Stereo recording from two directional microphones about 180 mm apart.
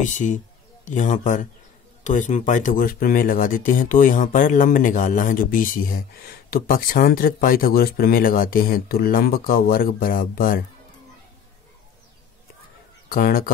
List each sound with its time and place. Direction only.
0.0 s speech: 45° left (ahead or behind)
13.1 s speech: 55° left (ahead or behind)